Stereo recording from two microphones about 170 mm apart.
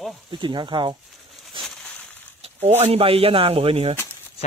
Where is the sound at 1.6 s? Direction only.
5° left (ahead or behind).